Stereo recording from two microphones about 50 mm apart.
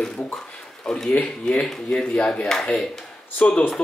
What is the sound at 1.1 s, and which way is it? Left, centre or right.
Speech, left.